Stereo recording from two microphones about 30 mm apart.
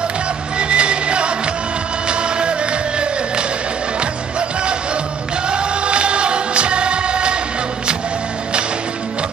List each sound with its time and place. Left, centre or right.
0.6 s music: right
4.0 s music: right